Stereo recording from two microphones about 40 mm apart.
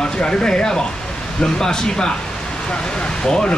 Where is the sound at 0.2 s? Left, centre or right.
Centre.